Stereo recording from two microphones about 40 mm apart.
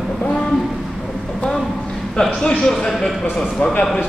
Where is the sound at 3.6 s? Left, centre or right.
Left.